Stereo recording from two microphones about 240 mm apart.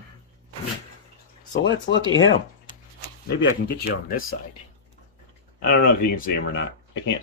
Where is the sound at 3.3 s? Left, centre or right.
Left.